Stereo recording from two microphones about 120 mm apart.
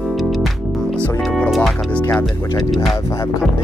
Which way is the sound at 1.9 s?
15° left (ahead or behind).